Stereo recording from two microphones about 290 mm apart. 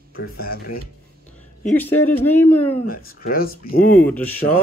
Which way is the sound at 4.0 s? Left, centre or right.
Centre.